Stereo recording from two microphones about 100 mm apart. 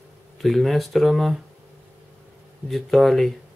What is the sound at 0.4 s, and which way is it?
Speech, centre (ahead or behind).